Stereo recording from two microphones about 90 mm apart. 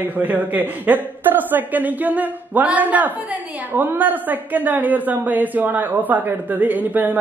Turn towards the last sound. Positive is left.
turn(degrees=-20)  # may be behind; listen again after turning